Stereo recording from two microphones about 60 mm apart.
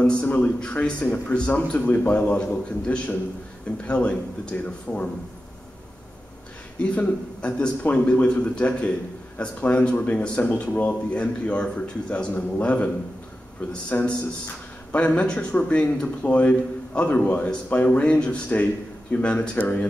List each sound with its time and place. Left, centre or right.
0.0 s a man's voice: centre
6.8 s a man's voice: left